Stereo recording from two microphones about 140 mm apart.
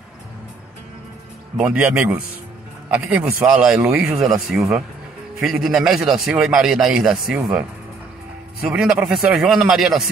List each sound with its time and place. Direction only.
1.6 s a man's voice: 10° right (ahead or behind)
8.6 s a man's voice: 5° right (ahead or behind)